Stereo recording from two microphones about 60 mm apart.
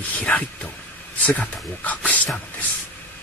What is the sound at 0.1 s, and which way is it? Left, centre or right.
Speech, left.